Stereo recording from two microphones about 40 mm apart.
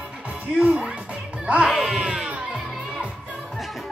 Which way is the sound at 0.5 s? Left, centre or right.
Right.